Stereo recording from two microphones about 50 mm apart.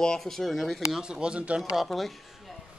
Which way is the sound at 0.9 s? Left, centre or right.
Centre.